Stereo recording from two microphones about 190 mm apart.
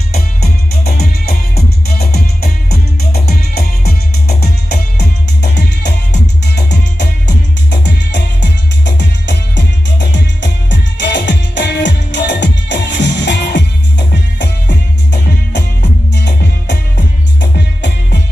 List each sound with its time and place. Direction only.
0.9 s music: 55° left (ahead or behind)